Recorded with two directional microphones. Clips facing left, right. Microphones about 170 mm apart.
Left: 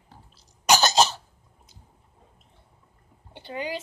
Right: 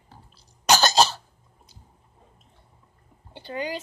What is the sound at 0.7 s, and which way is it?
Cough, 15° left (ahead or behind).